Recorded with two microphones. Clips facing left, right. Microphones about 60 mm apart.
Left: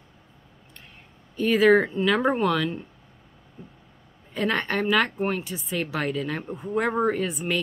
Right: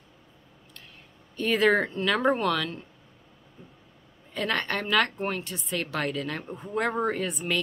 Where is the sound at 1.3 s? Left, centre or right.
Centre.